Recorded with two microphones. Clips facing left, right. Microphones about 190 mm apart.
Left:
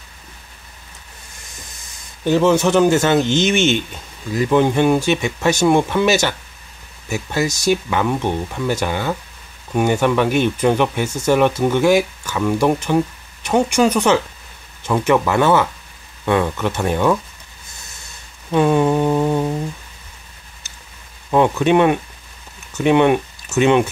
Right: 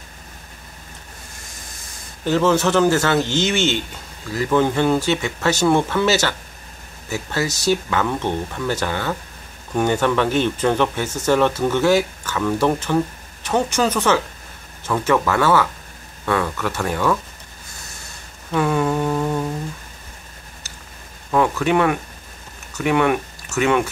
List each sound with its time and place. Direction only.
2.2 s speech: 15° left (ahead or behind)
18.5 s a sound: 20° left (ahead or behind)
21.3 s speech: 20° left (ahead or behind)